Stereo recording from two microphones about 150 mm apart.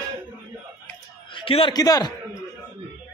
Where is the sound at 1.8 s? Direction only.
25° left (ahead or behind).